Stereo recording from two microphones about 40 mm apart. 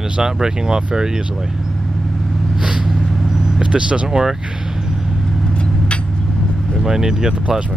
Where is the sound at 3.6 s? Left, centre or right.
Right.